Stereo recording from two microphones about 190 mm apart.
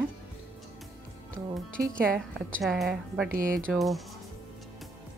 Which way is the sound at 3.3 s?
45° right (ahead or behind).